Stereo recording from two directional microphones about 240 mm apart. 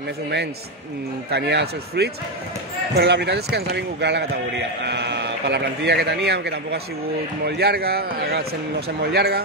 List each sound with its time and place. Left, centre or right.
1.3 s a man's voice: right